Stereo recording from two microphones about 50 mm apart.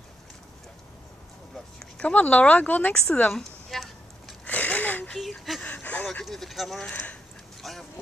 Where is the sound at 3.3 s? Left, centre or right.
Centre.